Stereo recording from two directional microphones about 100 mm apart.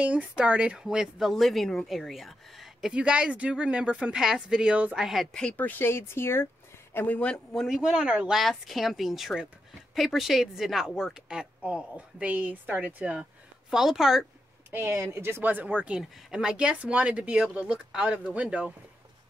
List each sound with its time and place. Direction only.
0.0 s speech: 10° right (ahead or behind); by 7.4 s 15° left (ahead or behind)
7.5 s speech: 5° right (ahead or behind)
13.7 s speech: 5° right (ahead or behind)
14.7 s speech: 20° right (ahead or behind)